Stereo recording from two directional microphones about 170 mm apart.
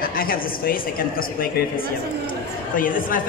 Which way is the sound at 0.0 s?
60° left (ahead or behind).